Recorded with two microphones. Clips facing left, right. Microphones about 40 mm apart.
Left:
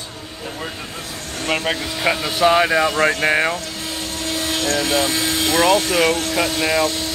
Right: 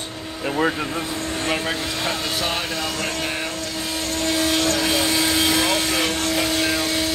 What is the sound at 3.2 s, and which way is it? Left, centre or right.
Speech, left.